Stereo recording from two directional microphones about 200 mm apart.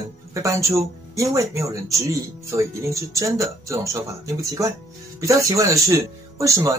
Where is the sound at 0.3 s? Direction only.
15° right (ahead or behind).